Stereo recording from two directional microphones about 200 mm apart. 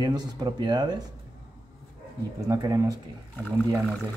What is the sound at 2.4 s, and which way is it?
Speech, 15° right (ahead or behind).